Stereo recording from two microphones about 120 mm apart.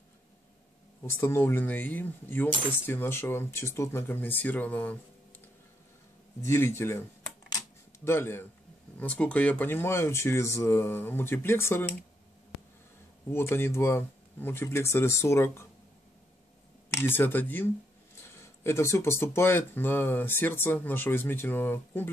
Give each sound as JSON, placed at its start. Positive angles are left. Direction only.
{"t": 1.0, "sound": "speech", "side_deg": 20}
{"t": 6.4, "sound": "speech", "side_deg": 20}
{"t": 13.3, "sound": "speech", "side_deg": 20}
{"t": 16.9, "sound": "speech", "side_deg": 20}